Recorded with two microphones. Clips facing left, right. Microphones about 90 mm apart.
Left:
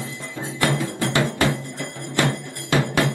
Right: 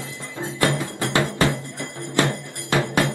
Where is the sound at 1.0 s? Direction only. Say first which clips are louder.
Right 1 dB; 20° right (ahead or behind).